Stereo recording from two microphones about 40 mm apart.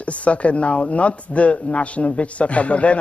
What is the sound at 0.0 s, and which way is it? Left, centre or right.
Speech, left.